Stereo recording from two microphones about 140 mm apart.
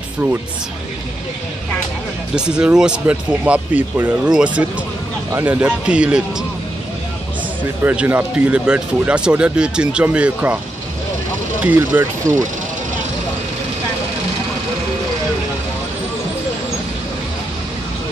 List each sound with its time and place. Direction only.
2.3 s speech: 5° right (ahead or behind)
7.8 s speech: 10° right (ahead or behind)
11.6 s speech: 15° right (ahead or behind)